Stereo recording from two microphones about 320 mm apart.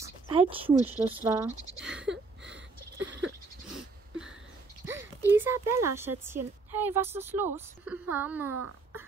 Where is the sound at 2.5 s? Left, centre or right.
Right.